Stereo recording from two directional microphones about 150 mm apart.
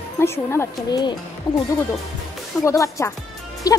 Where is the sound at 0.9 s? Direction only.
30° left (ahead or behind).